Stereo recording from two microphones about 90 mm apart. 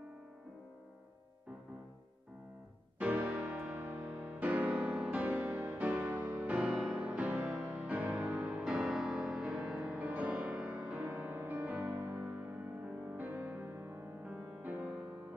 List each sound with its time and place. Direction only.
3.0 s music: 15° right (ahead or behind)